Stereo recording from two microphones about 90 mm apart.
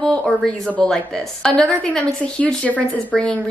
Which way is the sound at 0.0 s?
5° left (ahead or behind).